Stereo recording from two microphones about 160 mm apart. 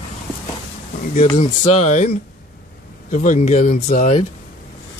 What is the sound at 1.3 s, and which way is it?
Speech, 50° left (ahead or behind).